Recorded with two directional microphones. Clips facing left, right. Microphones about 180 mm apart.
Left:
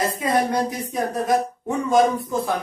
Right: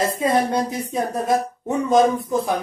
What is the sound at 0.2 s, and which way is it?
Music, 25° right (ahead or behind).